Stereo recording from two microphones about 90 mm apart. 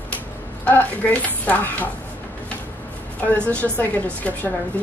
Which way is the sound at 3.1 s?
15° left (ahead or behind).